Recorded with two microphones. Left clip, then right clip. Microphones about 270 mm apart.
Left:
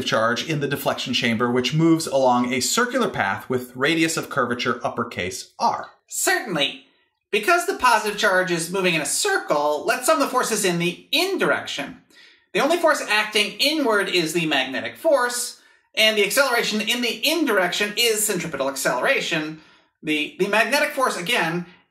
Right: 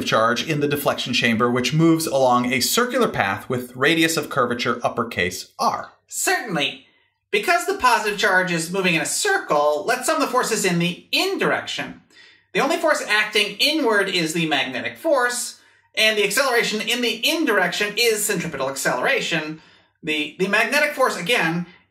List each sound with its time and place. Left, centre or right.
0.0 s speech: right
7.2 s speech: left